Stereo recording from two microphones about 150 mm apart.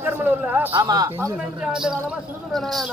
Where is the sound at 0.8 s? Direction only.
25° right (ahead or behind).